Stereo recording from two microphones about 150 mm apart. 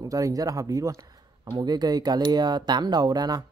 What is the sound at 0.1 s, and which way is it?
Speech, 25° right (ahead or behind).